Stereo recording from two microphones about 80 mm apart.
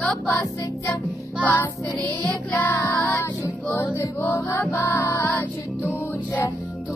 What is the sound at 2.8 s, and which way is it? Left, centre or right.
Child singing, left.